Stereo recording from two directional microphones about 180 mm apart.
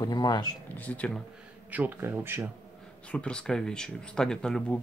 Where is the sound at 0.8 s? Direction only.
10° left (ahead or behind).